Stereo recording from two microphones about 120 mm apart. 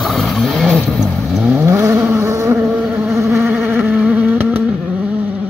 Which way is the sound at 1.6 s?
25° right (ahead or behind).